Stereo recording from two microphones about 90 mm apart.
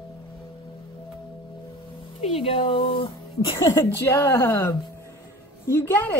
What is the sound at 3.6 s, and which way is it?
A woman's voice, 30° left (ahead or behind).